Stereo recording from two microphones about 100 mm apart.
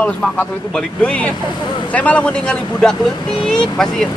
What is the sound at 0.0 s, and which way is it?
Speech, 15° left (ahead or behind).